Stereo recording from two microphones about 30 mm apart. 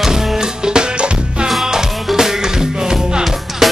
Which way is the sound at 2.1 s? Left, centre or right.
Centre.